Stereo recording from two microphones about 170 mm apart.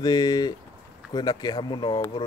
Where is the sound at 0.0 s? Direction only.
25° left (ahead or behind).